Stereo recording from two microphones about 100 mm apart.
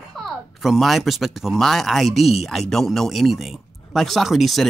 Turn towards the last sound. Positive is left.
turn(degrees=0)  # may be behind; listen again after turning